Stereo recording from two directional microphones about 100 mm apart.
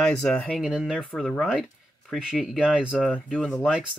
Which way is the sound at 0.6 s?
5° right (ahead or behind).